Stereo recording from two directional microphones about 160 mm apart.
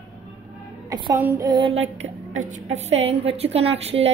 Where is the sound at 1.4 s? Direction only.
25° right (ahead or behind).